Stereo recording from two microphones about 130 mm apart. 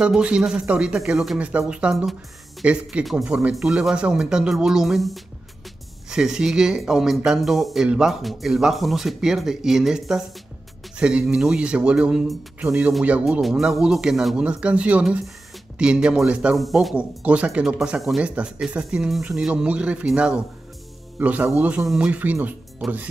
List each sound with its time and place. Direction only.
0.0 s speech: 5° right (ahead or behind)